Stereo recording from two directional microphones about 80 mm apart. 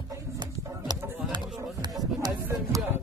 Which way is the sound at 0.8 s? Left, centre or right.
Right.